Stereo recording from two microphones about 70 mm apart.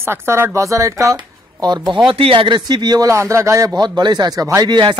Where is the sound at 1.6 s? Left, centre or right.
Right.